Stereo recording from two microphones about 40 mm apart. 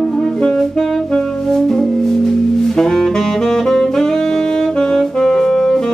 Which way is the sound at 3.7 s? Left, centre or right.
Centre.